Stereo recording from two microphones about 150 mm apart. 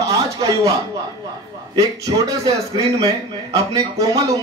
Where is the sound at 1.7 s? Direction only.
25° right (ahead or behind).